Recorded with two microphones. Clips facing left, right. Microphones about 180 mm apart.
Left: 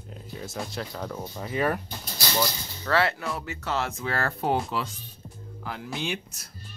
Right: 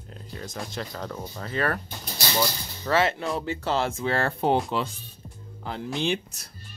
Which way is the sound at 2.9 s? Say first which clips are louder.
Right 2 dB; 20° right (ahead or behind).